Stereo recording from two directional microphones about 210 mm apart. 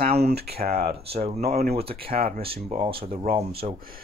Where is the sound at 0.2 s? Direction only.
50° right (ahead or behind).